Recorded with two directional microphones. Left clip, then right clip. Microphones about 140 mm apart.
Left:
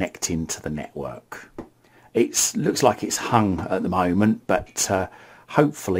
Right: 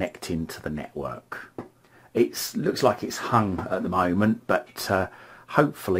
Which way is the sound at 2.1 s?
30° left (ahead or behind).